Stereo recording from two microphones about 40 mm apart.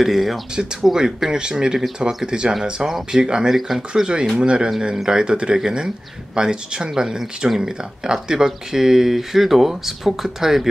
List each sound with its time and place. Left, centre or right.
0.0 s speech: centre
3.4 s speech: centre